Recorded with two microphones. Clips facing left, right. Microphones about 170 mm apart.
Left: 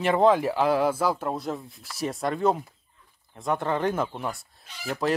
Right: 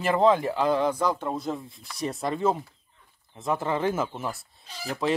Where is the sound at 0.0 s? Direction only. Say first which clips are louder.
Left 1 dB; centre (ahead or behind).